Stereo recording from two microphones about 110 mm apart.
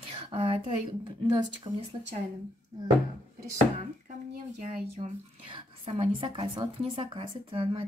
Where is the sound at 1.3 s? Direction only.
45° right (ahead or behind).